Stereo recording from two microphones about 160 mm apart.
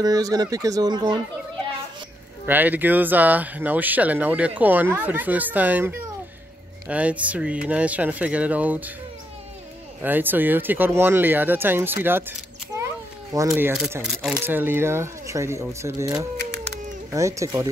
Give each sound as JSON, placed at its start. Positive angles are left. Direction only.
{"t": 0.0, "sound": "speech", "side_deg": -25}
{"t": 2.4, "sound": "speech", "side_deg": -10}
{"t": 10.0, "sound": "speech", "side_deg": -10}
{"t": 13.5, "sound": "speech", "side_deg": -10}
{"t": 14.0, "sound": "speech", "side_deg": 0}
{"t": 14.4, "sound": "speech", "side_deg": -15}